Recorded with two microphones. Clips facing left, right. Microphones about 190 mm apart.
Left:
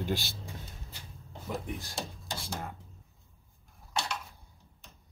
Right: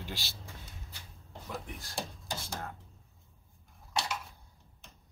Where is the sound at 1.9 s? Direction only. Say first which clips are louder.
Even; centre (ahead or behind).